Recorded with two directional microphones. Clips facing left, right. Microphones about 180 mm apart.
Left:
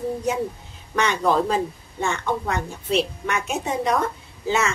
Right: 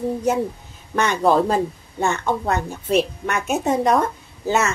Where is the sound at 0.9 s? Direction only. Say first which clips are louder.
Right 3 dB; 45° right (ahead or behind).